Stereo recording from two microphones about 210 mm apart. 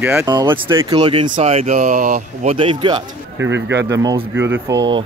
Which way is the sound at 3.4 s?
60° right (ahead or behind).